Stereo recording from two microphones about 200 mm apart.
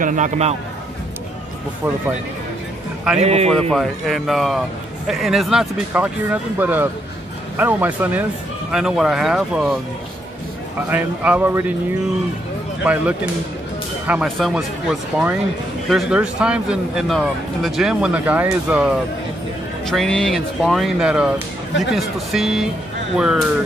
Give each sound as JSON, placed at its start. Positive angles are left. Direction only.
{"t": 0.0, "sound": "a man's voice", "side_deg": -40}
{"t": 3.2, "sound": "a man's voice", "side_deg": -30}
{"t": 3.7, "sound": "a man's voice", "side_deg": 0}
{"t": 10.9, "sound": "speech", "side_deg": -10}
{"t": 12.8, "sound": "a man's voice", "side_deg": -5}